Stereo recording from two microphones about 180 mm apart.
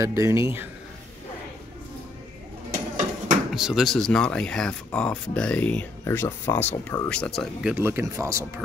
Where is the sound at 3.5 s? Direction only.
Centre (ahead or behind).